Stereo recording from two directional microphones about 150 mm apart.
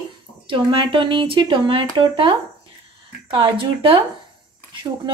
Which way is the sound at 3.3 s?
35° right (ahead or behind).